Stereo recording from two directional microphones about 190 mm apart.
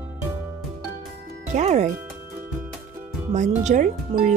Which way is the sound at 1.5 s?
35° right (ahead or behind).